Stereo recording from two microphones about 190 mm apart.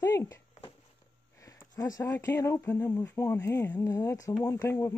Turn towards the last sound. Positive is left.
turn(degrees=15)  # may be behind; listen again after turning